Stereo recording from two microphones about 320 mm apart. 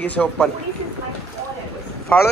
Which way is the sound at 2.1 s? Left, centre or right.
Centre.